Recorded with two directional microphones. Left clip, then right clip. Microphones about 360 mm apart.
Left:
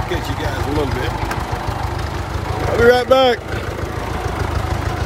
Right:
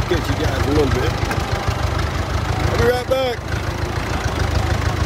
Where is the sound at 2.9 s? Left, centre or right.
Left.